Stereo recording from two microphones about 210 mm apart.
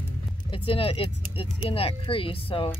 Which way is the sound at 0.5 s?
25° left (ahead or behind).